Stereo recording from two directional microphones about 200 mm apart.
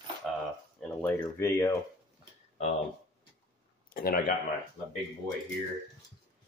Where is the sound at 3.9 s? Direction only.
45° left (ahead or behind).